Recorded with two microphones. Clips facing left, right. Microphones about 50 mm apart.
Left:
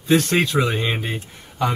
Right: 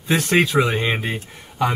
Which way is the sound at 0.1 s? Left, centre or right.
Centre.